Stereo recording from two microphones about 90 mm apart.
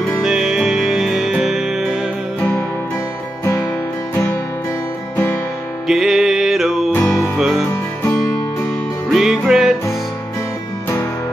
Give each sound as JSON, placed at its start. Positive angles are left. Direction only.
{"t": 0.2, "sound": "music", "side_deg": -5}
{"t": 4.1, "sound": "music", "side_deg": 25}
{"t": 5.9, "sound": "music", "side_deg": -5}
{"t": 9.1, "sound": "music", "side_deg": -5}